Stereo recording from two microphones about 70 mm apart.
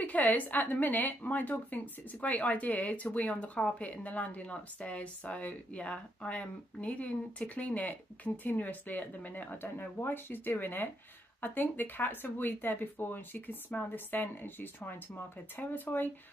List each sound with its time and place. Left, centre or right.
0.0 s a woman's voice: left